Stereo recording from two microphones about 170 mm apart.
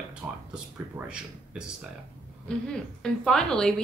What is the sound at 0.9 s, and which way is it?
Speech, 5° right (ahead or behind).